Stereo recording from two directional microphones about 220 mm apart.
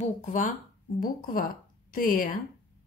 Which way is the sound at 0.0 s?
35° left (ahead or behind).